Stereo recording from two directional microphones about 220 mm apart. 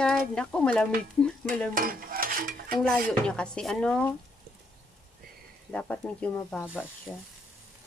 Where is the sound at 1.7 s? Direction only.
40° right (ahead or behind).